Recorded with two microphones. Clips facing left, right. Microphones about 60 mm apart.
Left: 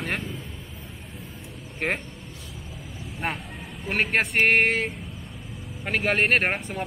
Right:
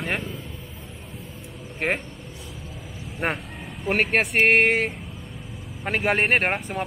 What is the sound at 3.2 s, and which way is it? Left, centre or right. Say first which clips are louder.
Speech: right 4 dB; centre.